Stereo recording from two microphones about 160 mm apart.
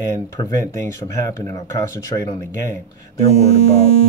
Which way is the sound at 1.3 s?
20° left (ahead or behind).